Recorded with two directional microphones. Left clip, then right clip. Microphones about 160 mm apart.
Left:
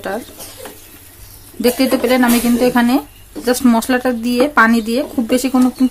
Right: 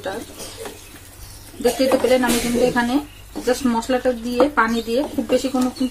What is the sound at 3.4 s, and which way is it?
Speech, 90° left.